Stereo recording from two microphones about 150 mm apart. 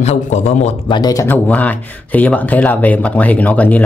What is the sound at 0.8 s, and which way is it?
Speech, 30° left (ahead or behind).